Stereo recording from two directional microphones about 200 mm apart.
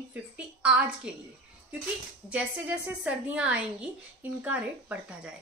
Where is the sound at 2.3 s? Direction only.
5° right (ahead or behind).